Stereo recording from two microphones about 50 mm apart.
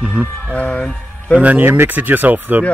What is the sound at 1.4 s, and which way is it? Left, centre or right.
Speech, right.